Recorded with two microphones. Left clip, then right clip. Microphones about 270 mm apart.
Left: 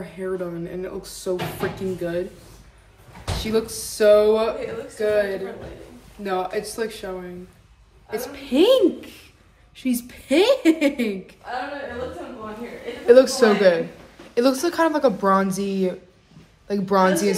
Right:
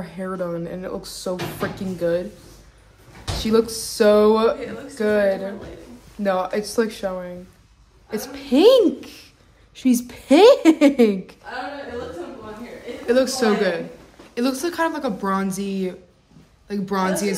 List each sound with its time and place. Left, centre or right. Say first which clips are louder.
0.0 s speech: even; centre
3.3 s a woman's voice: right 5 dB; centre
8.4 s a woman's voice: right 3 dB; centre
13.0 s speech: left 5 dB; centre